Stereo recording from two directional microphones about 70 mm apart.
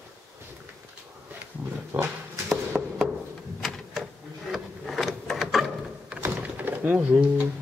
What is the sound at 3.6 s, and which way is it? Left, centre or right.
Printer, centre.